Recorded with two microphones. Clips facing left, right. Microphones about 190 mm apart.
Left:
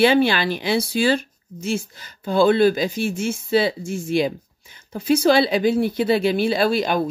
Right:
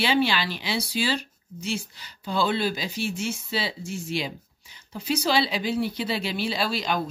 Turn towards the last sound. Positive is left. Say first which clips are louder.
# left 8 dB
turn(degrees=55)  # may be behind; listen again after turning